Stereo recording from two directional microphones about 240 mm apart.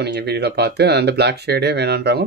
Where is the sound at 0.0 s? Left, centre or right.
Right.